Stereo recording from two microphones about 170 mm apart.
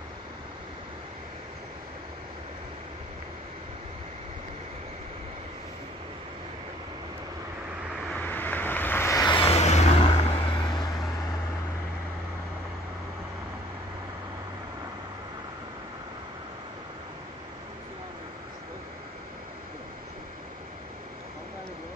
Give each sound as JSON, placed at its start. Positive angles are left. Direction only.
{"t": 8.1, "sound": "vehicle", "side_deg": 10}